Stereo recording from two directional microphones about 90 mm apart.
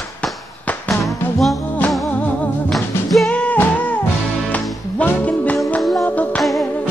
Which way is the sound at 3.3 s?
20° left (ahead or behind).